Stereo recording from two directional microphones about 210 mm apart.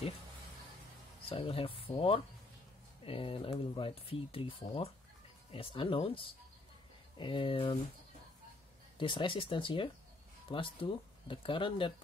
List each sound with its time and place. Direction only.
1.3 s speech: 25° left (ahead or behind)
8.9 s speech: 25° left (ahead or behind)